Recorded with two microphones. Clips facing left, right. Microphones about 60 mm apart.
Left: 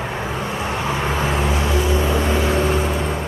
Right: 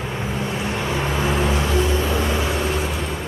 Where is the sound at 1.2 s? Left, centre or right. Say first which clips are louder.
Even; centre.